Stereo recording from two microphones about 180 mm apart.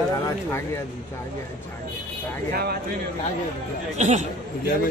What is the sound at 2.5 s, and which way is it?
Speech, 60° right (ahead or behind).